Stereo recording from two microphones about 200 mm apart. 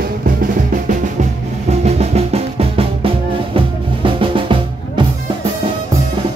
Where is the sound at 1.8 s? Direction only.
30° right (ahead or behind).